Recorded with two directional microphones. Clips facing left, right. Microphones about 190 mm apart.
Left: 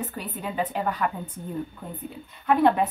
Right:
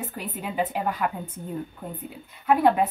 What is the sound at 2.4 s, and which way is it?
Speech, 5° right (ahead or behind).